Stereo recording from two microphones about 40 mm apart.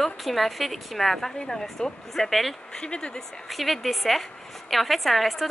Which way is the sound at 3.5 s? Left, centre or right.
Centre.